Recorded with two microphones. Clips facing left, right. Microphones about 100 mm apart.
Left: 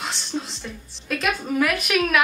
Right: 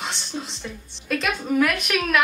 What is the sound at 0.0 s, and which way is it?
A woman's voice, centre (ahead or behind).